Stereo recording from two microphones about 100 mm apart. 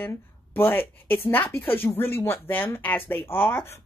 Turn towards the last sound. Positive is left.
turn(degrees=20)  # may be behind; listen again after turning